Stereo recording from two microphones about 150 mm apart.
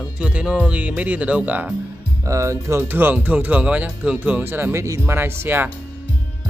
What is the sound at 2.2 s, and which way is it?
Speech, 20° right (ahead or behind).